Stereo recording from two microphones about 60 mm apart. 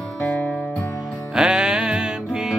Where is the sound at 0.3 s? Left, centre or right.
Left.